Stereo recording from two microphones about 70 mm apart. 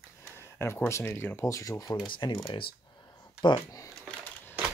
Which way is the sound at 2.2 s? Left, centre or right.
Left.